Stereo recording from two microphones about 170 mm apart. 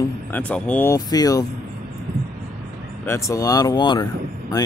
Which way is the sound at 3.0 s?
15° left (ahead or behind).